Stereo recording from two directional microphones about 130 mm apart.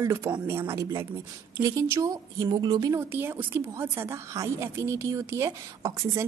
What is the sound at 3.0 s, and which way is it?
A woman's voice, 15° right (ahead or behind).